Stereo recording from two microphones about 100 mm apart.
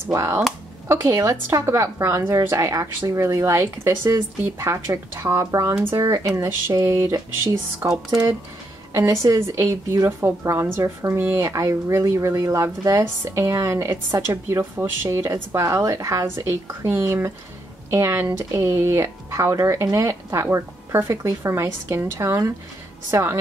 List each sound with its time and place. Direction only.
0.1 s a woman's voice: 30° right (ahead or behind)
8.9 s a woman's voice: 30° right (ahead or behind)